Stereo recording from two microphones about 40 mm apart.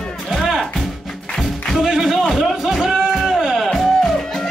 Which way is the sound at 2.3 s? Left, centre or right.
Centre.